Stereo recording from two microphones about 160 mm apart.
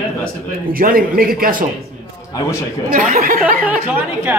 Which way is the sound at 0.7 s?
65° right (ahead or behind).